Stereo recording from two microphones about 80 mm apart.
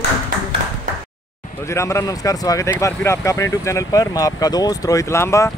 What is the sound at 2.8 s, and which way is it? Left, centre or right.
Speech, left.